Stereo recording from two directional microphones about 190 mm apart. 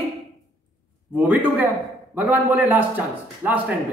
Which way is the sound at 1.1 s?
10° right (ahead or behind).